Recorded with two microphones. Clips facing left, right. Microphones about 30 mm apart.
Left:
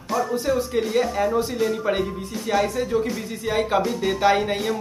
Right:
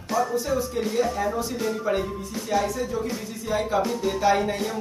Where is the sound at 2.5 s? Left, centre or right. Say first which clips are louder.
Left 4 dB; left.